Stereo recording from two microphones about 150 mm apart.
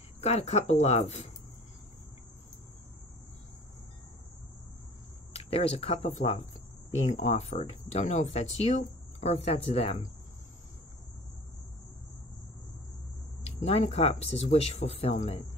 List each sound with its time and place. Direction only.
0.2 s speech: 45° left (ahead or behind)
5.3 s speech: 40° left (ahead or behind)
13.6 s speech: 45° left (ahead or behind)